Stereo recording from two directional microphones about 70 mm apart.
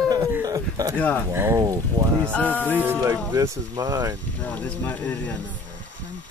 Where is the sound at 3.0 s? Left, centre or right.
Right.